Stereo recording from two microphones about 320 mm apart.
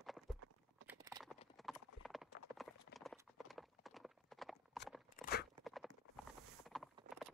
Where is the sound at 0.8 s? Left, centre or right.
Centre.